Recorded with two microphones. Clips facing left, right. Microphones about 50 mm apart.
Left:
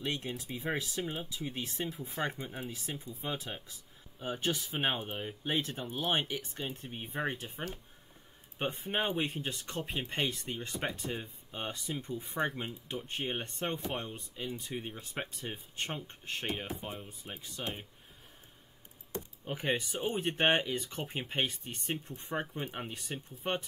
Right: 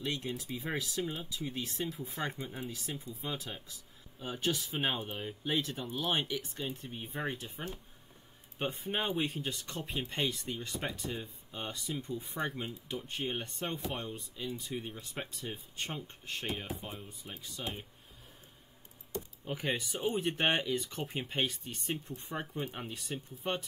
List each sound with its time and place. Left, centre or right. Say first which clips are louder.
0.0 s speech: even; centre
7.1 s speech: left 2 dB; centre
19.4 s speech: left 2 dB; centre